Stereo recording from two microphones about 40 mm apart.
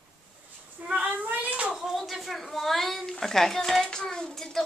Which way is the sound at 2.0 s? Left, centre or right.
Centre.